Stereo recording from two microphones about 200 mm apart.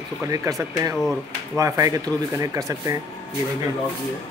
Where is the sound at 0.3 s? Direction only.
15° right (ahead or behind).